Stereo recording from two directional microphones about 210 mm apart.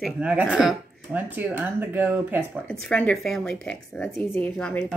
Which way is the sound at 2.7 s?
5° left (ahead or behind).